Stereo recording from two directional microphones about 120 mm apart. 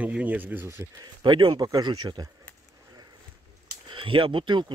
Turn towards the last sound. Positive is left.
turn(degrees=-40)  # may be behind; listen again after turning